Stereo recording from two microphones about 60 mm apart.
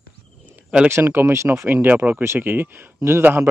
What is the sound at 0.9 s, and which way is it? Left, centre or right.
Speech, right.